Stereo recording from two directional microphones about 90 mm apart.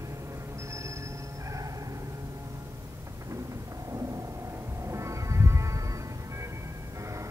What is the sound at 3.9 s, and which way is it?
Music, 35° right (ahead or behind).